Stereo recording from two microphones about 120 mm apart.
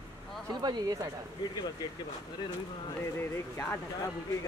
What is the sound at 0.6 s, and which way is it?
Speech, 35° right (ahead or behind).